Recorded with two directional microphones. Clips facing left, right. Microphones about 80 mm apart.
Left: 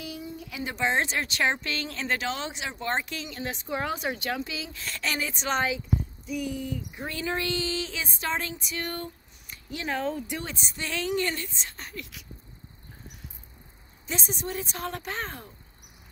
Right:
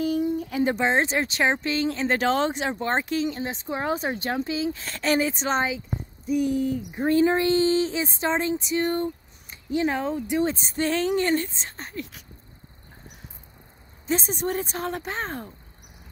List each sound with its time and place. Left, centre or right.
0.0 s speech: right
2.1 s speech: right
6.2 s a sound: right
10.5 s speech: right
14.0 s speech: right